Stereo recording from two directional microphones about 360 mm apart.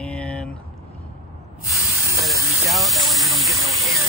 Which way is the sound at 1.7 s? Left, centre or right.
Centre.